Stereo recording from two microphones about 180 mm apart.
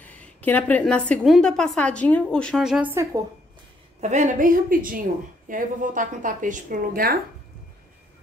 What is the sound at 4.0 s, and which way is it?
Speech, 40° right (ahead or behind).